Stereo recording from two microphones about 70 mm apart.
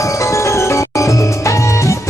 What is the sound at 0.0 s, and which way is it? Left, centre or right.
Music, left.